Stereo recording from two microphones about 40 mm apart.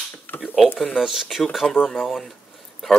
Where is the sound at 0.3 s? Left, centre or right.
Left.